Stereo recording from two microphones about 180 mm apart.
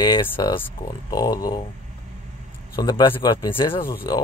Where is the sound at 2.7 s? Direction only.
20° left (ahead or behind).